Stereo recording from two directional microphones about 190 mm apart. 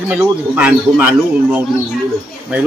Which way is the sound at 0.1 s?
5° right (ahead or behind).